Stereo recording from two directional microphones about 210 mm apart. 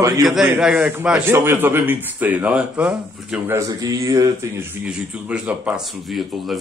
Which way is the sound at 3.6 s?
15° right (ahead or behind).